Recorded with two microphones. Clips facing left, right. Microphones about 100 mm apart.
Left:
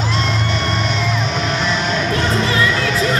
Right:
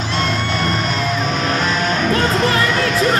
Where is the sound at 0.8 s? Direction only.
45° right (ahead or behind).